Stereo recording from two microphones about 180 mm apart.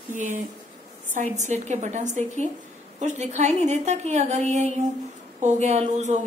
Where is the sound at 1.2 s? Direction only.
40° right (ahead or behind).